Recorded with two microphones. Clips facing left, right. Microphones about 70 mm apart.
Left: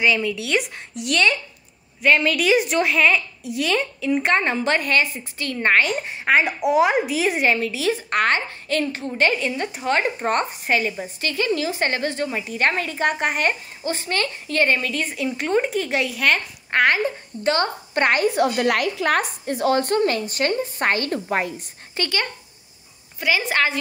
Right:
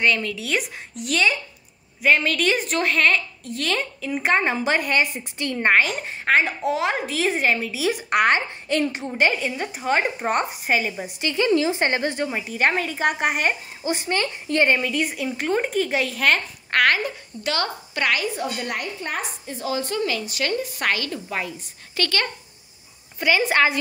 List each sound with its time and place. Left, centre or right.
0.0 s speech: centre
4.9 s a woman's voice: right
5.7 s speech: centre
6.0 s speech: centre
9.5 s speech: centre
11.1 s a woman's voice: right
12.5 s speech: centre
15.0 s speech: centre
16.7 s a child's voice: left
17.4 s a woman's voice: left
18.3 s speech: left
21.9 s speech: left
23.1 s speech: centre